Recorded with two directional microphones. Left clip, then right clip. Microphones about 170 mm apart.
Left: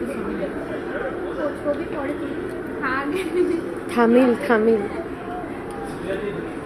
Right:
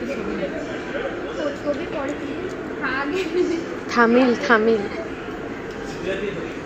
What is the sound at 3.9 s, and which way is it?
Speech, 20° left (ahead or behind).